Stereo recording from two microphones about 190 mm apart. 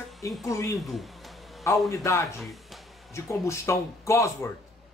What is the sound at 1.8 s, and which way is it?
Speech, 15° left (ahead or behind).